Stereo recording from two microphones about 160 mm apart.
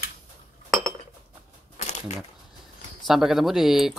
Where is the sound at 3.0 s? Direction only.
Centre (ahead or behind).